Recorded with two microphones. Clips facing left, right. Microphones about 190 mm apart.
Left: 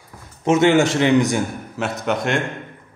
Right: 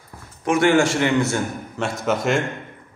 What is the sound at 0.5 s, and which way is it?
Speech, 20° left (ahead or behind).